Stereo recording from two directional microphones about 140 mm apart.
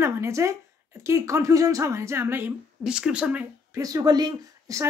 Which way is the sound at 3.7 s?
25° right (ahead or behind).